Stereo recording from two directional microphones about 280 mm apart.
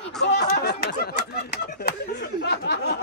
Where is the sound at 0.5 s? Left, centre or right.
Left.